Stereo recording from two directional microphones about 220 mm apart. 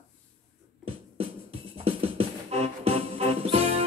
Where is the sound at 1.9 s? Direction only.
25° right (ahead or behind).